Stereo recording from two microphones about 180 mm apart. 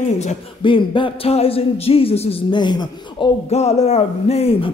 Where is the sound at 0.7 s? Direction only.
30° left (ahead or behind).